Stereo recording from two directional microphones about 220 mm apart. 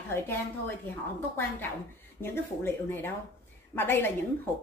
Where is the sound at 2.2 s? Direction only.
10° left (ahead or behind).